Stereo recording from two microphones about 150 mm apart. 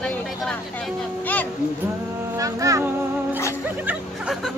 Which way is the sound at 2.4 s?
20° right (ahead or behind).